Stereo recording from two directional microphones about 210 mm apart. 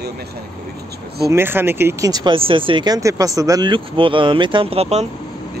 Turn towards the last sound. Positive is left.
turn(degrees=-30)  # may be behind; listen again after turning